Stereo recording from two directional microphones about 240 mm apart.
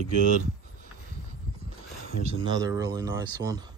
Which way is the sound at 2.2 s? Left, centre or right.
Centre.